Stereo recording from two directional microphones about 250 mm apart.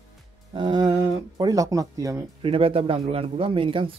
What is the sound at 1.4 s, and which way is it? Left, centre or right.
Speech, centre.